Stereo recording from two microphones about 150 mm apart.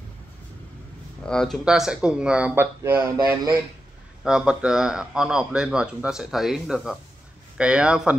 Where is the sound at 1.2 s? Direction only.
5° left (ahead or behind); by 3.3 s 15° right (ahead or behind).